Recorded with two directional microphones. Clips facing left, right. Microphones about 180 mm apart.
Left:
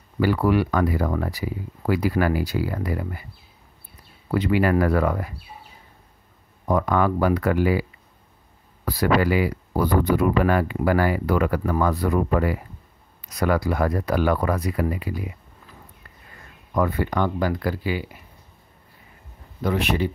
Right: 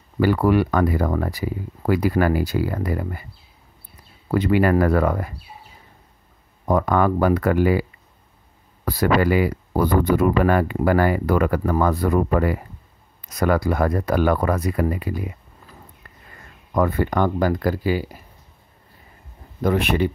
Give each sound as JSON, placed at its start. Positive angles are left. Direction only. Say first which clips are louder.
{"t": 0.2, "sound": "speech", "louder": "right 2 dB", "side_deg": -50}
{"t": 4.3, "sound": "speech", "louder": "right 3 dB", "side_deg": -50}
{"t": 6.7, "sound": "speech", "louder": "right 2 dB", "side_deg": -50}
{"t": 8.8, "sound": "speech", "louder": "right 2 dB", "side_deg": -50}
{"t": 16.7, "sound": "speech", "louder": "right 3 dB", "side_deg": -45}
{"t": 19.6, "sound": "speech", "louder": "right 3 dB", "side_deg": -50}